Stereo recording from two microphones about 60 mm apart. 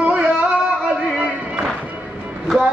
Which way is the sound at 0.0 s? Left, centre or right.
Right.